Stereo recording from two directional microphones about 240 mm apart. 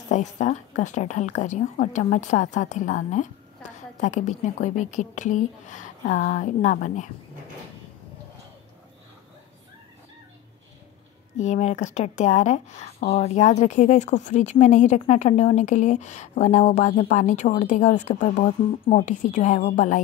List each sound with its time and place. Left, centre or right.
0.1 s a woman's voice: left
11.3 s a woman's voice: left